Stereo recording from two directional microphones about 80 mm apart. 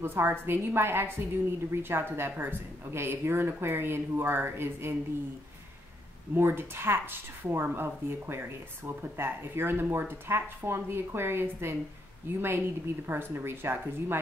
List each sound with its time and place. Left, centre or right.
0.0 s speech: right
6.3 s speech: right